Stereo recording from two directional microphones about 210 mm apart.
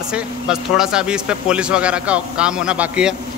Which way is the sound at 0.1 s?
5° right (ahead or behind).